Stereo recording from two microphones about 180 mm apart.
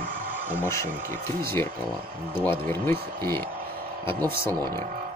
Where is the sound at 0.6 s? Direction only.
15° left (ahead or behind).